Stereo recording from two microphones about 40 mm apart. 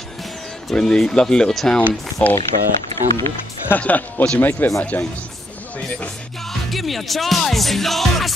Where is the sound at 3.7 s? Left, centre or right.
Left.